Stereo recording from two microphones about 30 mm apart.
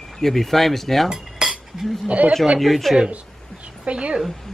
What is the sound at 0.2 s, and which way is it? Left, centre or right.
Speech, centre.